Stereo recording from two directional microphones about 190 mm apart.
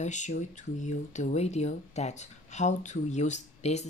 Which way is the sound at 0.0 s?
40° left (ahead or behind).